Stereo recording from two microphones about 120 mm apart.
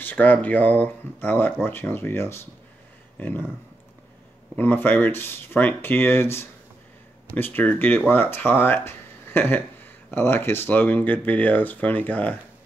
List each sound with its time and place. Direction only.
0.0 s speech: 15° left (ahead or behind)
4.6 s speech: 15° left (ahead or behind)